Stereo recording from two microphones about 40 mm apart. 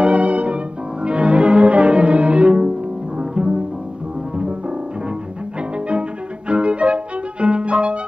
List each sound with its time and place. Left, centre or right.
0.0 s music: right
1.0 s cello: right
3.2 s music: right
6.5 s violin: right